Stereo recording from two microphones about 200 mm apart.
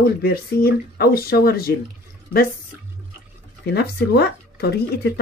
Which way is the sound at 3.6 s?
55° left (ahead or behind).